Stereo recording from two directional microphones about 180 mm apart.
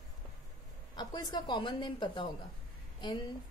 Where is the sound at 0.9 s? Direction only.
25° left (ahead or behind).